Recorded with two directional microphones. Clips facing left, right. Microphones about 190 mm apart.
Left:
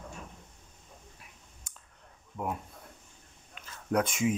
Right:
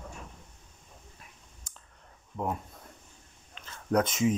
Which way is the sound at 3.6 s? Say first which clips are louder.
Right 2 dB; 5° left (ahead or behind).